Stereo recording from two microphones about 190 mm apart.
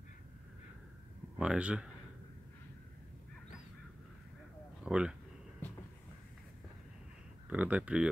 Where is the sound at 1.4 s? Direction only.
5° right (ahead or behind).